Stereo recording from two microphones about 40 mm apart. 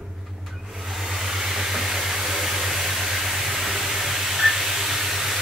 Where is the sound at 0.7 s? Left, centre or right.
Centre.